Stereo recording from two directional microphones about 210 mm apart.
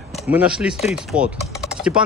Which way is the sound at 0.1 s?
5° right (ahead or behind).